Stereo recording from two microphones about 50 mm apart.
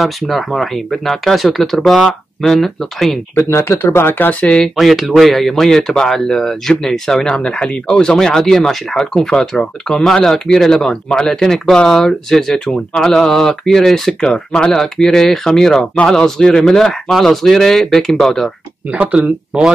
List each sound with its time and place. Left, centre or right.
0.0 s speech: centre
3.3 s speech: left
3.8 s speech: left
4.7 s speech: centre
18.9 s speech: right
19.1 s speech: centre